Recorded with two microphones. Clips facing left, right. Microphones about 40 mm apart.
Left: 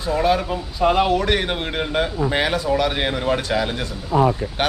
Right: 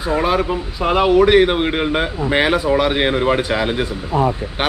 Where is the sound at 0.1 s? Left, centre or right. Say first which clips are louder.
Right 2 dB; centre.